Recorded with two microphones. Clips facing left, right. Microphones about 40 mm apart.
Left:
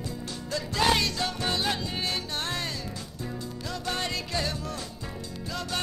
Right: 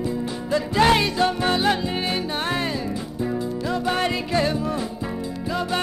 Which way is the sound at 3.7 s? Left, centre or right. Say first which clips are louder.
Right 8 dB; right.